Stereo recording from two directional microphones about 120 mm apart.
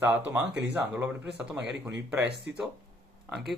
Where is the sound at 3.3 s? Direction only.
5° right (ahead or behind).